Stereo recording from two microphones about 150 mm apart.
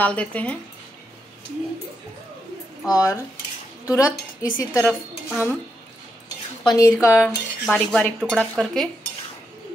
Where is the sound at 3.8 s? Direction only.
20° left (ahead or behind).